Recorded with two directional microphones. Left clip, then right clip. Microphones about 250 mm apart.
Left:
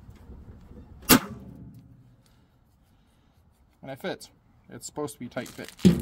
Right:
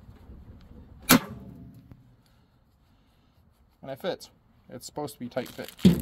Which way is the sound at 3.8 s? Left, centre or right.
Centre.